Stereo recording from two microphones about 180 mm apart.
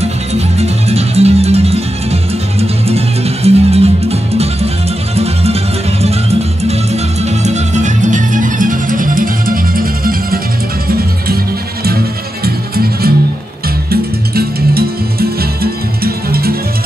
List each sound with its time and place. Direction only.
0.0 s music: 35° right (ahead or behind)
6.6 s music: 35° right (ahead or behind); by 11.3 s 55° right (ahead or behind)
12.4 s music: 60° right (ahead or behind)